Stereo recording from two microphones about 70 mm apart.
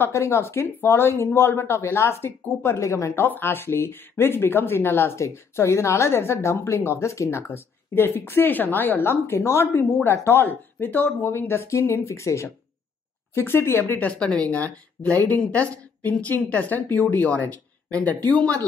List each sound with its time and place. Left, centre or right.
0.0 s speech: left
3.2 s speech: left
13.9 s speech: centre